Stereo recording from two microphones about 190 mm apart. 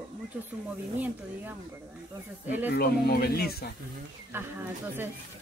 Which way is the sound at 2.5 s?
10° right (ahead or behind).